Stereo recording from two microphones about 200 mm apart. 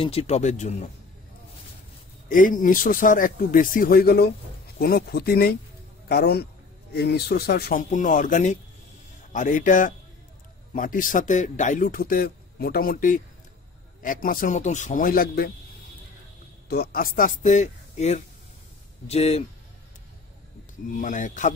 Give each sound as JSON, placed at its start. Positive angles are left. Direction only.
{"t": 0.0, "sound": "speech", "side_deg": 30}
{"t": 2.2, "sound": "a man's voice", "side_deg": 40}
{"t": 16.6, "sound": "speech", "side_deg": 50}
{"t": 20.9, "sound": "speech", "side_deg": 40}